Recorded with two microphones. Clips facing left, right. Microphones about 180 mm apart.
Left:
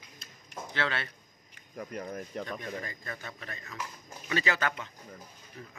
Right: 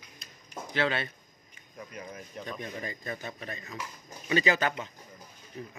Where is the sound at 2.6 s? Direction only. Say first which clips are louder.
Right 1 dB; 20° right (ahead or behind).